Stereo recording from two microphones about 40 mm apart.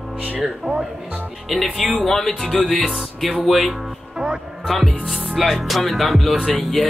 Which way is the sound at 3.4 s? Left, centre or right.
Centre.